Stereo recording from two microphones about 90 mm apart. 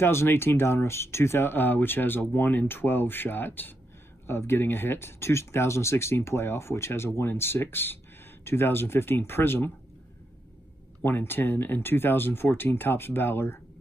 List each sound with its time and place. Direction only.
0.0 s speech: 30° left (ahead or behind)
11.0 s speech: 25° left (ahead or behind)